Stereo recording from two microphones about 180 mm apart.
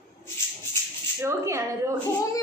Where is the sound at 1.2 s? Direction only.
15° right (ahead or behind).